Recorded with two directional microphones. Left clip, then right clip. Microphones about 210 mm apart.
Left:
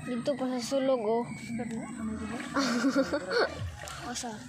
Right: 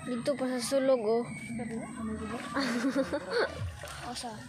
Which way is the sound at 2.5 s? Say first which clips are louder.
Left 3 dB; 5° left (ahead or behind).